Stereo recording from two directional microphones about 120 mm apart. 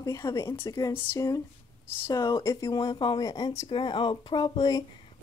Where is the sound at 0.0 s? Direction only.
30° left (ahead or behind).